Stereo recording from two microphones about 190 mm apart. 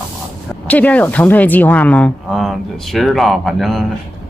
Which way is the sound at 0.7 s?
10° left (ahead or behind).